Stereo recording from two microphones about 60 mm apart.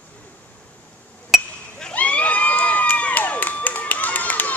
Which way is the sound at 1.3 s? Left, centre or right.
Centre.